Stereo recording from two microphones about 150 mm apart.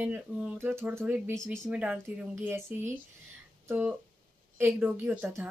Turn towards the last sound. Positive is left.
turn(degrees=-10)  # may be behind; listen again after turning